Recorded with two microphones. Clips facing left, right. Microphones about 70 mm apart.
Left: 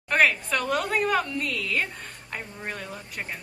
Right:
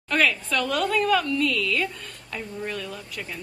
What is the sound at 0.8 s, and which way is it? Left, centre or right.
A woman's voice, left.